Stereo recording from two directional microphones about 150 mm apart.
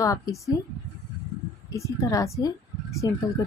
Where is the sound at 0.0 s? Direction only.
20° left (ahead or behind).